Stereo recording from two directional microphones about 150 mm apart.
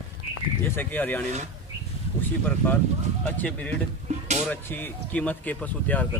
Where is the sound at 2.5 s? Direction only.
15° left (ahead or behind).